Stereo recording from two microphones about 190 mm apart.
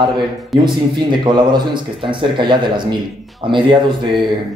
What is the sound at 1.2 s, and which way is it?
Speech, 25° right (ahead or behind).